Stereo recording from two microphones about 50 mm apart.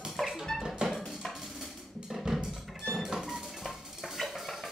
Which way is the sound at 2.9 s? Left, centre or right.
Centre.